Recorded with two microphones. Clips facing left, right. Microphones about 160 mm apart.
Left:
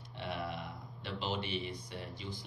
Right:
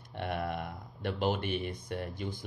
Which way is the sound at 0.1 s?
55° right (ahead or behind).